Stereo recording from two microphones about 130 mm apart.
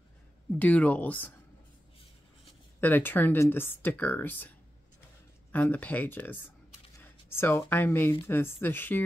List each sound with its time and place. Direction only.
0.6 s speech: 10° left (ahead or behind)
2.8 s speech: 15° left (ahead or behind)